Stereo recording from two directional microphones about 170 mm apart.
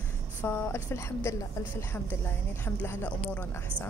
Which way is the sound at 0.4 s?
15° left (ahead or behind).